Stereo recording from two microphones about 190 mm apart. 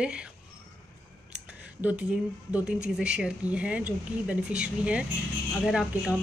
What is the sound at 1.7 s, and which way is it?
Speech, 10° right (ahead or behind).